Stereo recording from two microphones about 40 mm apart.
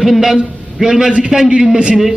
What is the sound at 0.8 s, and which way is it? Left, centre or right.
Speech, centre.